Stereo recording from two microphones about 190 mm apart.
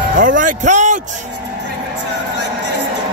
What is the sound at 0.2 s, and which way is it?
Speech, 45° right (ahead or behind).